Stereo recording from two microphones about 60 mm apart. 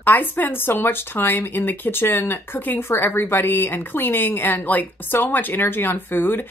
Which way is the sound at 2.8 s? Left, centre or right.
Left.